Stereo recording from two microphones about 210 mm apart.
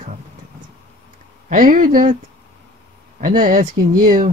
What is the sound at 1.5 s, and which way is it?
Speech, 40° right (ahead or behind).